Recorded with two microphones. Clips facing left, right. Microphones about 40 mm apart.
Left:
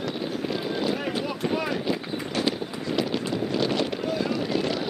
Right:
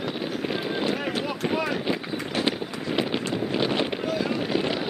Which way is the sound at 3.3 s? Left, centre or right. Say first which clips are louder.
Even; right.